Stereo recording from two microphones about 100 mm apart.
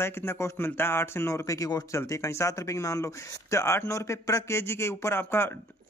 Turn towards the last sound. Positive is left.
turn(degrees=20)  # may be behind; listen again after turning